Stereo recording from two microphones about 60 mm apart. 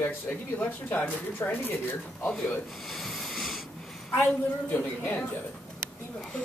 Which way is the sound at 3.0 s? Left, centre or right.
Centre.